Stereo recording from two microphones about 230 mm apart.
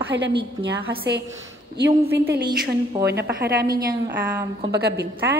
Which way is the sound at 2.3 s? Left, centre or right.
Right.